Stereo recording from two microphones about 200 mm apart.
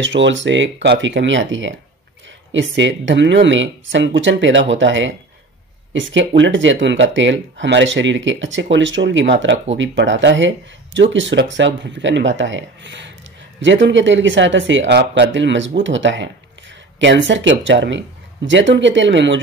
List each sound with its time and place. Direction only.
0.0 s speech: 65° right (ahead or behind)